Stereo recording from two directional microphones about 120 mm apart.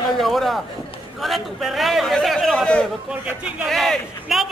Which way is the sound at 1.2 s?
Centre (ahead or behind).